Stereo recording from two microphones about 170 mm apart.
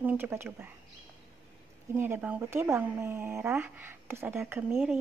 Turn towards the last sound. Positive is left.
turn(degrees=-15)  # may be behind; listen again after turning